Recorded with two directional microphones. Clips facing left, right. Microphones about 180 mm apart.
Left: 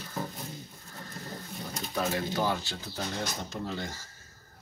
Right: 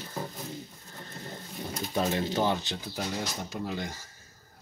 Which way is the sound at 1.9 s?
25° right (ahead or behind).